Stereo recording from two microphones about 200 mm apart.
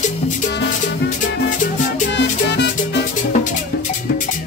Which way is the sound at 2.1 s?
60° left (ahead or behind).